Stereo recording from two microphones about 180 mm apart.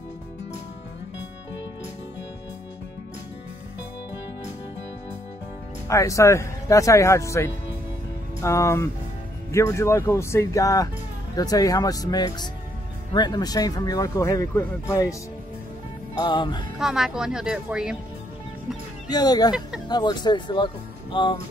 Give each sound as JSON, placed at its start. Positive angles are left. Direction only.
{"t": 5.9, "sound": "speech", "side_deg": 15}
{"t": 16.2, "sound": "speech", "side_deg": 25}
{"t": 16.7, "sound": "speech", "side_deg": 0}
{"t": 19.0, "sound": "speech", "side_deg": 20}